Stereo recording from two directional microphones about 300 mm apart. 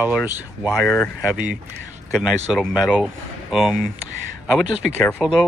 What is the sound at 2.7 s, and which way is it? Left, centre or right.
Speech, centre.